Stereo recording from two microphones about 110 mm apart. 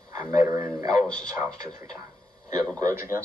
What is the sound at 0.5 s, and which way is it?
A man's voice, 30° right (ahead or behind).